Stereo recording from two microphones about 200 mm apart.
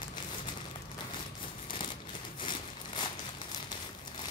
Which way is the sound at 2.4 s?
25° left (ahead or behind).